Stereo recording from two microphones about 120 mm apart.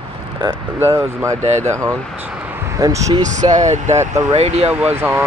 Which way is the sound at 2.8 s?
30° right (ahead or behind).